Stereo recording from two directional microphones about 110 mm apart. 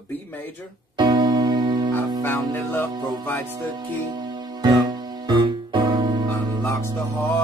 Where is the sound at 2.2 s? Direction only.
20° left (ahead or behind).